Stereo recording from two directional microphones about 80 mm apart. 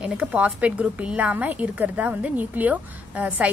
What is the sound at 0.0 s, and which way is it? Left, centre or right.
A woman's voice, centre.